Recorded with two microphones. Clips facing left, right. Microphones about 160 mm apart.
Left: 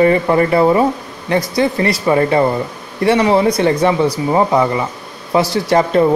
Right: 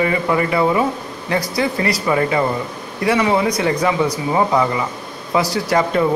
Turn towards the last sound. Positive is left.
turn(degrees=30)  # may be behind; listen again after turning